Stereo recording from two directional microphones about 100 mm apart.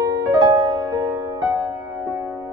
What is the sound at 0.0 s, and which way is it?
Music, 40° right (ahead or behind).